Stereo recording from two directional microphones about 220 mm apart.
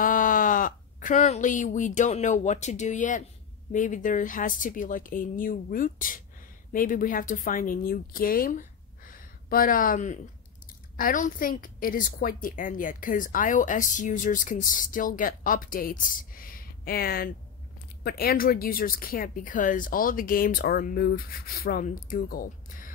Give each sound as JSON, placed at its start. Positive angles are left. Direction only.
{"t": 0.0, "sound": "a woman's voice", "side_deg": 40}